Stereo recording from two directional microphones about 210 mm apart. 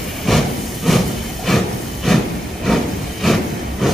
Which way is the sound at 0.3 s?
Centre (ahead or behind).